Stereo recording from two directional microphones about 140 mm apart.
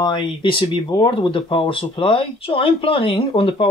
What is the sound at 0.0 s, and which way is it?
Speech, 35° left (ahead or behind).